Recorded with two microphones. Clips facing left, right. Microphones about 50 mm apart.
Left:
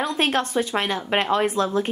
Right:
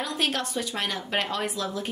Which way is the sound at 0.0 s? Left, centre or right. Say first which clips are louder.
Left 6 dB; left.